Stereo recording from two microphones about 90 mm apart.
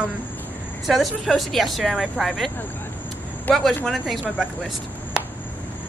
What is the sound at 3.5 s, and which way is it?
Speech, centre (ahead or behind).